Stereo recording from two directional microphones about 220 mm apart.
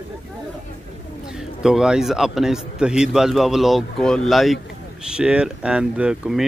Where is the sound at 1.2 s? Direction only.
Centre (ahead or behind).